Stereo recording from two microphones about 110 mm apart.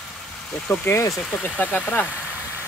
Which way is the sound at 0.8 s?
25° left (ahead or behind).